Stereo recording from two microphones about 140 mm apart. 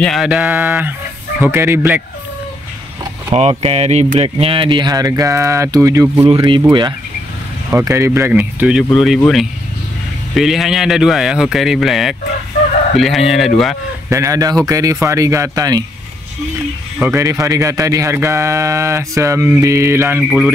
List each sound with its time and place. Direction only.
0.0 s speech: centre (ahead or behind)
3.3 s speech: 50° right (ahead or behind); by 6.4 s 25° right (ahead or behind)
7.7 s speech: 20° right (ahead or behind); by 9.2 s centre (ahead or behind)
10.3 s speech: centre (ahead or behind)
14.0 s speech: 25° right (ahead or behind)
17.1 s speech: 20° right (ahead or behind)
20.2 s speech: 5° right (ahead or behind)